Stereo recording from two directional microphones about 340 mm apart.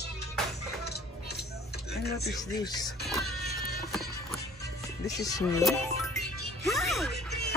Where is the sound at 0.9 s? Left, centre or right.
Left.